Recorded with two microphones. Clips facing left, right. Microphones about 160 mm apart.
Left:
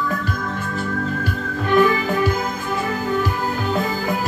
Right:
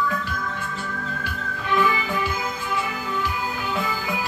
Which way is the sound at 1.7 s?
45° left (ahead or behind).